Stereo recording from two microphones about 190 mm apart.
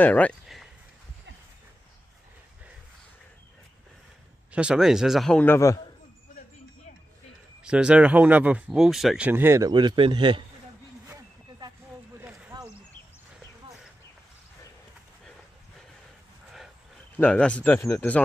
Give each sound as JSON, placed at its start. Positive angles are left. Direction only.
{"t": 0.0, "sound": "speech", "side_deg": 10}
{"t": 4.5, "sound": "a man's voice", "side_deg": -5}
{"t": 7.6, "sound": "speech", "side_deg": -5}
{"t": 11.1, "sound": "vehicle", "side_deg": -15}
{"t": 12.2, "sound": "a sound", "side_deg": -5}
{"t": 17.2, "sound": "speech", "side_deg": 5}